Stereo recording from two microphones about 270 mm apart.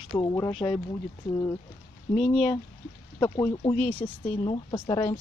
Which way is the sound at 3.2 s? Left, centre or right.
Centre.